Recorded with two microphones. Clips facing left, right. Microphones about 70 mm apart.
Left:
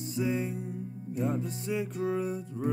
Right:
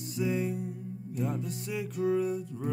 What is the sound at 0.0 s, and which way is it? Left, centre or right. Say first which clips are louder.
Music: even; left.